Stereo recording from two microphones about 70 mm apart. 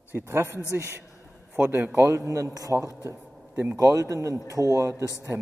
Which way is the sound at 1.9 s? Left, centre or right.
Right.